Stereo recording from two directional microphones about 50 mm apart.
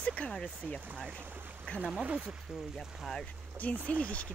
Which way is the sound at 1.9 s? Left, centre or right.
Right.